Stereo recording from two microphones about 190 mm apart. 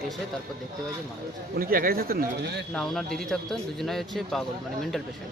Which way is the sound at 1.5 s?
50° right (ahead or behind).